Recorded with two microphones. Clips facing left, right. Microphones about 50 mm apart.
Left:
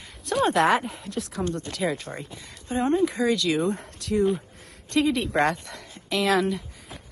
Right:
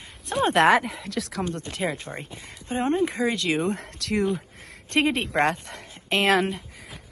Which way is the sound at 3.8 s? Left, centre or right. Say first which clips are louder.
Left 1 dB; right.